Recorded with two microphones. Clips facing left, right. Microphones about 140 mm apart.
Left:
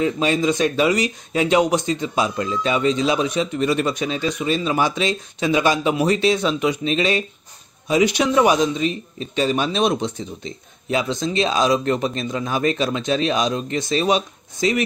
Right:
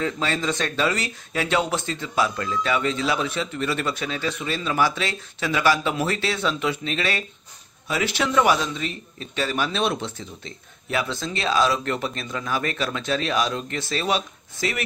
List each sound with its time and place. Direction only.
0.0 s speech: 15° left (ahead or behind)